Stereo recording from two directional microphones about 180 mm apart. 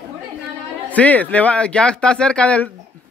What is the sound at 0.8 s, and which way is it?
Speech, 10° left (ahead or behind).